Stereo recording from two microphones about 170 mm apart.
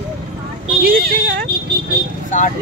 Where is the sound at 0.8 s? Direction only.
60° right (ahead or behind).